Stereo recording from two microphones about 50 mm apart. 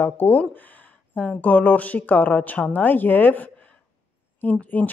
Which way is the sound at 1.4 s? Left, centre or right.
Left.